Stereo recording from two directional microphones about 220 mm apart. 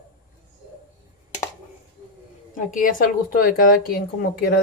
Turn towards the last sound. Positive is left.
turn(degrees=40)  # may be behind; listen again after turning